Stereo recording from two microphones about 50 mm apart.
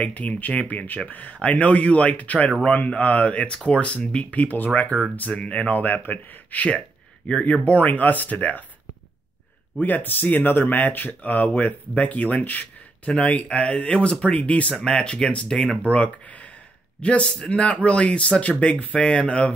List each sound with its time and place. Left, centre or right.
0.0 s speech: left
9.8 s speech: left; by 15.8 s centre
15.8 s speech: left